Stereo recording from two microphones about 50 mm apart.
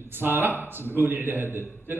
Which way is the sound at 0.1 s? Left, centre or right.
Right.